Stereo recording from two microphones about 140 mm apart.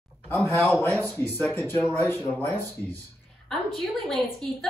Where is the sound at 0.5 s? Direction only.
20° left (ahead or behind).